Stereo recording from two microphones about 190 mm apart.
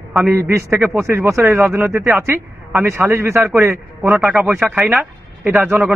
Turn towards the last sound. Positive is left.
turn(degrees=-10)  # may be behind; listen again after turning